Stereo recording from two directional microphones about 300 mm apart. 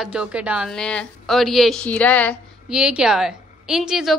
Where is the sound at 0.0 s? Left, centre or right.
Centre.